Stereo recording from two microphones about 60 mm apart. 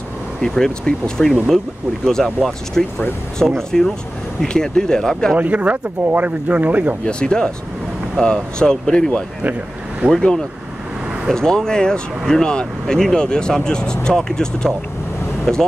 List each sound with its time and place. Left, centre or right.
0.4 s speech: centre
5.3 s speech: right
7.1 s speech: centre